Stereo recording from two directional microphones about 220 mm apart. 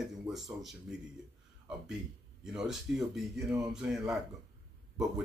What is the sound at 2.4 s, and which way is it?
A man's voice, centre (ahead or behind).